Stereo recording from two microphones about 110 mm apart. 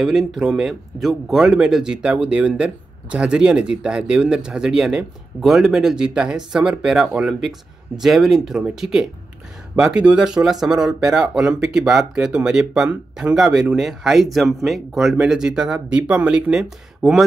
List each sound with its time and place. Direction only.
0.0 s speech: centre (ahead or behind)